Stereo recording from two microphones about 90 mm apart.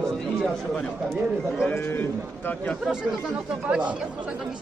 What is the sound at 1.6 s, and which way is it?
Speech, 25° left (ahead or behind).